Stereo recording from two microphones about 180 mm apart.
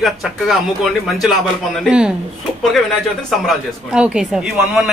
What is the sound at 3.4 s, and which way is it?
A woman's voice, 5° right (ahead or behind).